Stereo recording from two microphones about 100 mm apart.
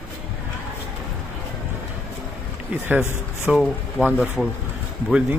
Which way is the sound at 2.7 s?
15° right (ahead or behind).